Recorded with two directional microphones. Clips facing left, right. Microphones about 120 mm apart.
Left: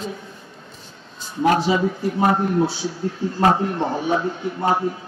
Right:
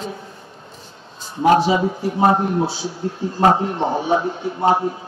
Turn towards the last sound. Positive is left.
turn(degrees=-25)  # may be behind; listen again after turning